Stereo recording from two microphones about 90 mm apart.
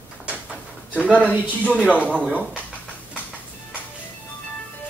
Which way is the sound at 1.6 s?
15° left (ahead or behind).